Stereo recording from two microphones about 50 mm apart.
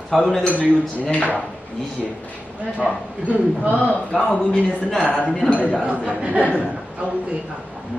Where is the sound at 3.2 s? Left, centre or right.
Right.